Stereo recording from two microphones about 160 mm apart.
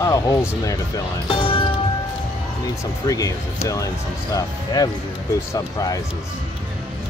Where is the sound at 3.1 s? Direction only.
20° left (ahead or behind).